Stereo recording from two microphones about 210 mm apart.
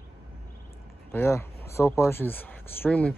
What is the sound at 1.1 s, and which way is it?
Speech, 10° left (ahead or behind).